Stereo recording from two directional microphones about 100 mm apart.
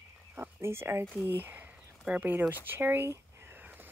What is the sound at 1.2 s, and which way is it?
Speech, 20° right (ahead or behind).